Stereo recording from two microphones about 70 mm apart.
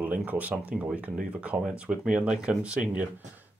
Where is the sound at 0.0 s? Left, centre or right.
Right.